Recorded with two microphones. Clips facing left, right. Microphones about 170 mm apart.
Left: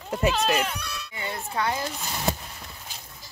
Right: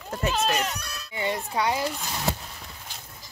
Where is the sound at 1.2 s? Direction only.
15° right (ahead or behind).